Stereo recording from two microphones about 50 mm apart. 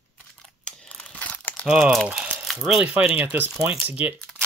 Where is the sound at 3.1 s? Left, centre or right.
Right.